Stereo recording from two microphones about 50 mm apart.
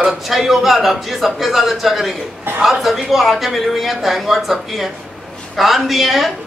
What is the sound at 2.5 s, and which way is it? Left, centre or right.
Speech, right.